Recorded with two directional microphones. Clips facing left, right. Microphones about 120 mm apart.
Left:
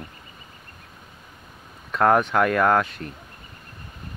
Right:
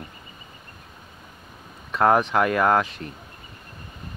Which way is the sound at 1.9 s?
5° right (ahead or behind).